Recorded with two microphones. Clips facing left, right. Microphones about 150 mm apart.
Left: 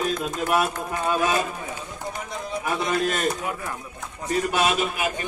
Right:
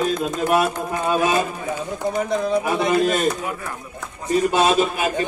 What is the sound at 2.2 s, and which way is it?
Speech, 90° right.